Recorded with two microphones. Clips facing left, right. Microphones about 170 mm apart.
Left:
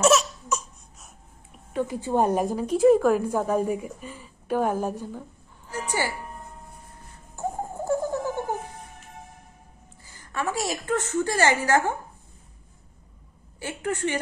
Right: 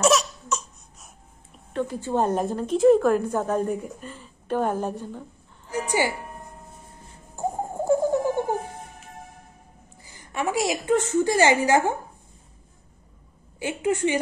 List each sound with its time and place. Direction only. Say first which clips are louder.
0.0 s laughter: left 1 dB; centre (ahead or behind)
1.7 s a woman's voice: even; 10° left (ahead or behind)
5.7 s music: right 4 dB; 15° right (ahead or behind)
7.3 s a sound: right 3 dB; 15° right (ahead or behind)
10.0 s a woman's voice: right 2 dB; 15° right (ahead or behind)
13.6 s a woman's voice: right 5 dB; 15° right (ahead or behind)